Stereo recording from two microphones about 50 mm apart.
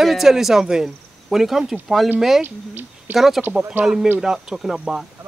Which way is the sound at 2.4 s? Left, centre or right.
Right.